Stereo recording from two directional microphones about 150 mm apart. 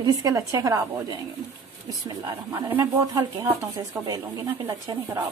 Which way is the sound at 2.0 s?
35° right (ahead or behind).